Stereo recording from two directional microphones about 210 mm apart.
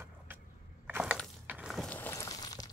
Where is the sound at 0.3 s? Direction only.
10° right (ahead or behind).